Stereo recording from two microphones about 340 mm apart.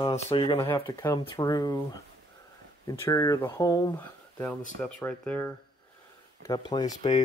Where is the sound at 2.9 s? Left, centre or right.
Centre.